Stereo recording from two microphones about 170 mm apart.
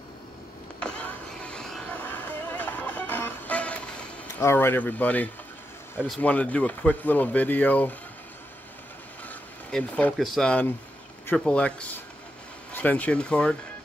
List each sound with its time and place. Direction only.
0.7 s power windows: 5° left (ahead or behind)
4.4 s speech: 15° left (ahead or behind)
9.2 s a sound: 5° left (ahead or behind)
10.2 s speech: centre (ahead or behind)